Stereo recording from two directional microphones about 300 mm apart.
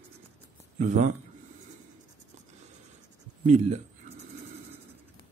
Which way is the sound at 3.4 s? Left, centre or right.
Right.